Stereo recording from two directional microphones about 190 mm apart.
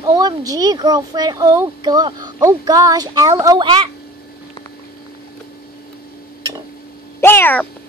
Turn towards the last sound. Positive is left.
turn(degrees=10)  # may be behind; listen again after turning